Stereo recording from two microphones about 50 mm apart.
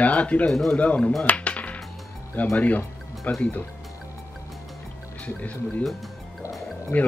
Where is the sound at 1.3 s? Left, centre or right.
Left.